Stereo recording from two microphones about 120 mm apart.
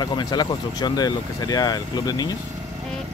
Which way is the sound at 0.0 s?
35° left (ahead or behind).